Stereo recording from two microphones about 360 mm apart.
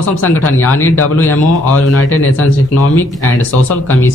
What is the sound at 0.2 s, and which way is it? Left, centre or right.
Speech, centre.